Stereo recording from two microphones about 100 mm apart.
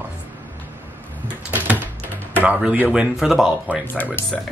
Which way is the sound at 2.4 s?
15° right (ahead or behind).